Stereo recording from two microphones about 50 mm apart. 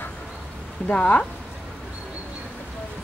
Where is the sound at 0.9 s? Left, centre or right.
Centre.